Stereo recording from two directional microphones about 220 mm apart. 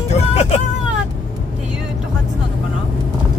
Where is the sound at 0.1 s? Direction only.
30° left (ahead or behind).